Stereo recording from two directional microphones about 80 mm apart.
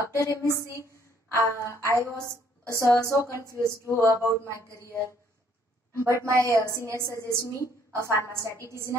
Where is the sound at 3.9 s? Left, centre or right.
Left.